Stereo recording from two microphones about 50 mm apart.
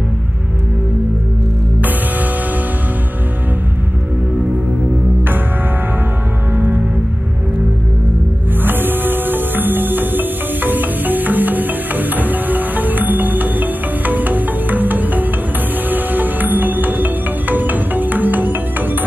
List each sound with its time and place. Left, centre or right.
6.5 s music: right
8.6 s music: right